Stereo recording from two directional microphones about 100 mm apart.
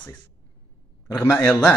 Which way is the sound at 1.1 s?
20° left (ahead or behind).